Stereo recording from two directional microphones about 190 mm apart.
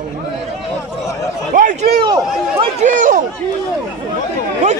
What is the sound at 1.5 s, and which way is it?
A man's voice, 45° right (ahead or behind).